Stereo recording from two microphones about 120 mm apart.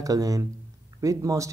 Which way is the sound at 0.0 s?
30° right (ahead or behind).